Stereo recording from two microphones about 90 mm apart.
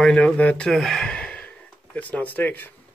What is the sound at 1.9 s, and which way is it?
Speech, 15° left (ahead or behind).